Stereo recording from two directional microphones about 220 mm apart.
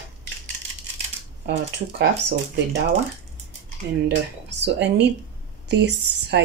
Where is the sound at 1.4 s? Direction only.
50° right (ahead or behind).